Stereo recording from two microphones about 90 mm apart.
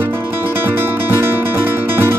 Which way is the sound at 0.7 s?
25° right (ahead or behind).